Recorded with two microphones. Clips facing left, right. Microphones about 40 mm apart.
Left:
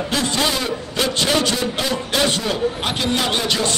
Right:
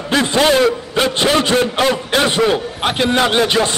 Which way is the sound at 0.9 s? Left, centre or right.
Right.